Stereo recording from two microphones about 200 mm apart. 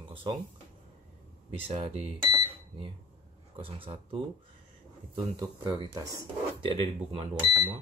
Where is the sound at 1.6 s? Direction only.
25° right (ahead or behind).